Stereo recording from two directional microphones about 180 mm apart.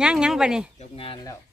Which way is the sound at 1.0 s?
30° left (ahead or behind).